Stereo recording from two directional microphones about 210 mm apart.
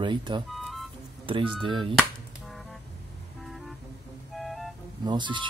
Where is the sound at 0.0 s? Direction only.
20° right (ahead or behind).